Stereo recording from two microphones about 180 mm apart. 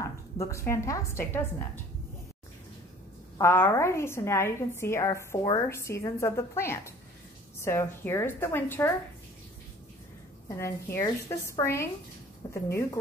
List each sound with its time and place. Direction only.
0.0 s a woman's voice: 15° left (ahead or behind)
3.3 s a woman's voice: 15° left (ahead or behind)
10.5 s a woman's voice: 15° left (ahead or behind)